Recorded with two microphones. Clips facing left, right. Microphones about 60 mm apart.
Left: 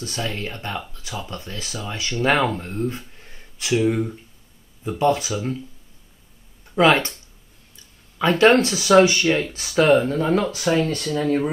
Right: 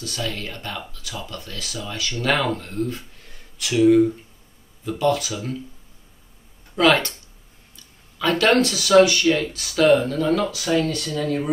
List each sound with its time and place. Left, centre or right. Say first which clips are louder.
0.0 s speech: left 1 dB; left
4.8 s speech: left 1 dB; left
6.7 s speech: left 1 dB; left
8.2 s speech: left 3 dB; left